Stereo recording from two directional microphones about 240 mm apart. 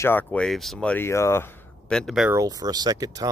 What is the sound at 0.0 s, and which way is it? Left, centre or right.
Speech, centre.